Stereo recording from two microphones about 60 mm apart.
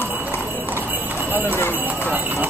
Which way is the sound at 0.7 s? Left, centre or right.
Right.